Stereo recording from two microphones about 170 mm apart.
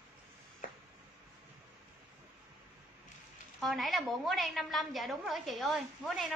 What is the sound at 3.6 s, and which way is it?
A woman's voice, centre (ahead or behind).